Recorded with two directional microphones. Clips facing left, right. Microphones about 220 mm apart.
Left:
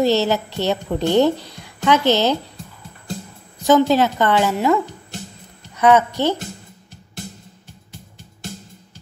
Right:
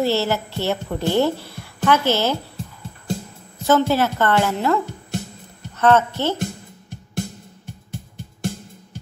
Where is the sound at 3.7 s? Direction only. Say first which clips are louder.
Left 3 dB; 15° left (ahead or behind).